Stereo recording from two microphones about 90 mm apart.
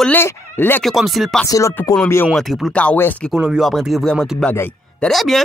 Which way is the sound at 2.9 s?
20° left (ahead or behind).